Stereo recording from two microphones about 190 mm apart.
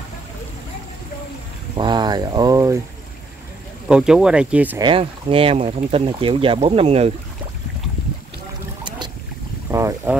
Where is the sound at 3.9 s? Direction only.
5° right (ahead or behind).